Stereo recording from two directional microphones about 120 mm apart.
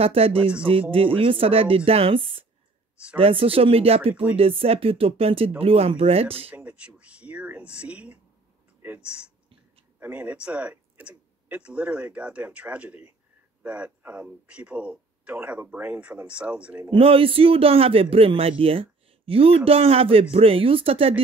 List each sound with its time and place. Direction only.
0.0 s speech: 55° right (ahead or behind)
6.5 s speech: 10° right (ahead or behind)
16.9 s speech: 50° right (ahead or behind)